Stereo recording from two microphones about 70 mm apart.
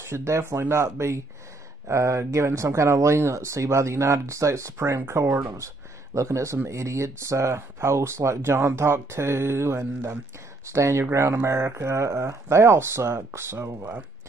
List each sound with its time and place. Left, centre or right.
0.0 s speech: right